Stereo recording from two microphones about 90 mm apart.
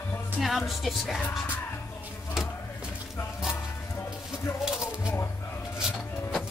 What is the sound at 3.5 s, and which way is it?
Music, 30° left (ahead or behind).